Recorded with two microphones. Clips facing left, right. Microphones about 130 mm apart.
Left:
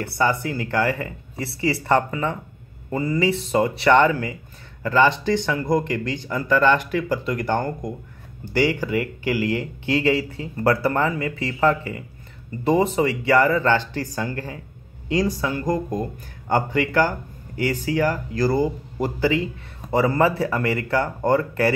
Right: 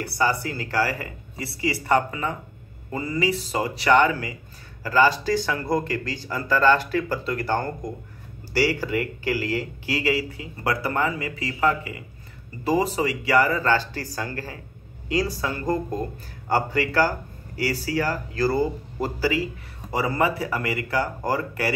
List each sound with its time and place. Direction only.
0.0 s speech: 20° left (ahead or behind)
3.2 s speech: 25° left (ahead or behind)
11.1 s a man's voice: 25° right (ahead or behind)
11.3 s speech: 30° left (ahead or behind)
20.1 s a man's voice: 25° right (ahead or behind)
20.9 s speech: 25° left (ahead or behind)